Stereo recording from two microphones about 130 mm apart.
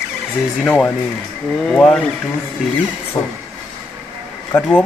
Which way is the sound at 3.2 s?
30° left (ahead or behind).